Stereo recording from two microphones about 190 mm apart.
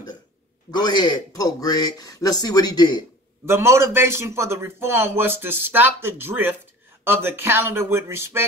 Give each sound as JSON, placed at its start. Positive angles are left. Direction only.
{"t": 0.7, "sound": "speech", "side_deg": 20}
{"t": 3.4, "sound": "a man's voice", "side_deg": -15}